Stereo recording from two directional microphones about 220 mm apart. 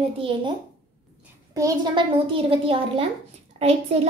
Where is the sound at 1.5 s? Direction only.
15° right (ahead or behind).